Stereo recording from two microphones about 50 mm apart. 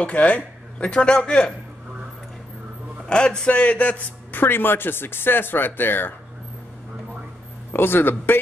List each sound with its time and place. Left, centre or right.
0.0 s speech: left
3.1 s a man's voice: centre; by 6.1 s left
7.7 s a man's voice: left